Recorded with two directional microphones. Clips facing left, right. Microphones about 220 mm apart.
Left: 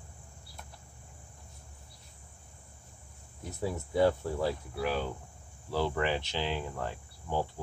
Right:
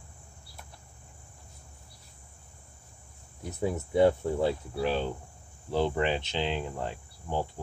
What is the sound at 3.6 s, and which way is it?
Cricket, 20° right (ahead or behind).